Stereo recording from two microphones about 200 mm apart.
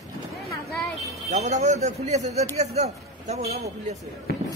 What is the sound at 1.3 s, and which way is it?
A man's voice, 35° right (ahead or behind).